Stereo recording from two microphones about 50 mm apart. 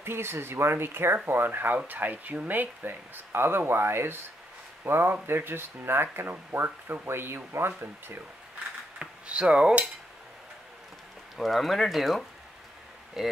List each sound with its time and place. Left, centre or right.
0.0 s speech: right
9.0 s cutlery: right
11.3 s speech: centre